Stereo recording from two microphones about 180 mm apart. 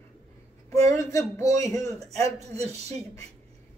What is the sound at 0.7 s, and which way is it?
Speech, 15° left (ahead or behind).